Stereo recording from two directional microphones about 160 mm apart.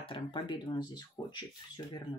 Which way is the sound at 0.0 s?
35° left (ahead or behind).